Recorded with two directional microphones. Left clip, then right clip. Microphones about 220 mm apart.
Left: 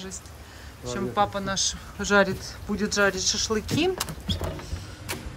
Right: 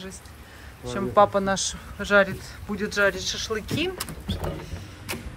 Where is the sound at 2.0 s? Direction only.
10° left (ahead or behind).